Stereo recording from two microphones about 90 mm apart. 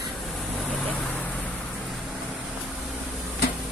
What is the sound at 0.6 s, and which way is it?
Vehicle, 5° left (ahead or behind).